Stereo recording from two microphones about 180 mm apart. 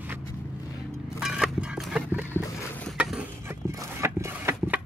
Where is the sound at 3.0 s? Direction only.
5° right (ahead or behind).